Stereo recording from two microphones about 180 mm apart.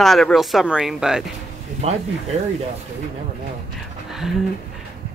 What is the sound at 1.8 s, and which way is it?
Speech, 35° right (ahead or behind).